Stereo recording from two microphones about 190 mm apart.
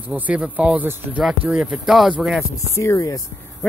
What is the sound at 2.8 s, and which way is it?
Speech, 15° left (ahead or behind).